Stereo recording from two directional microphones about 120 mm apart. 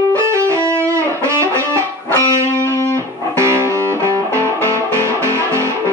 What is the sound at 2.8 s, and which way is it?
Music, 20° left (ahead or behind).